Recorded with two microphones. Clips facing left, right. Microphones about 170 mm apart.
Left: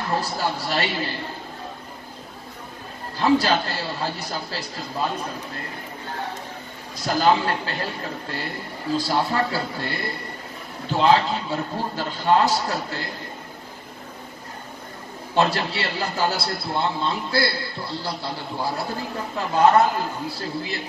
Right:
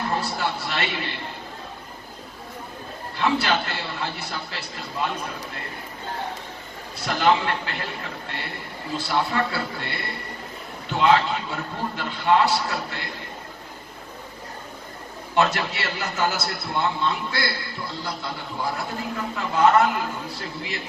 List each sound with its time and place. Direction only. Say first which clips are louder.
0.2 s a man's voice: left 1 dB; 35° left (ahead or behind)
3.2 s a man's voice: left 4 dB; 35° left (ahead or behind)
7.0 s a man's voice: left 1 dB; 35° left (ahead or behind)
15.3 s a man's voice: left 1 dB; 30° left (ahead or behind)